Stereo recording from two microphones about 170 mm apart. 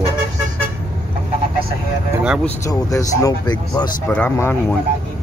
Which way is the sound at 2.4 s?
20° left (ahead or behind).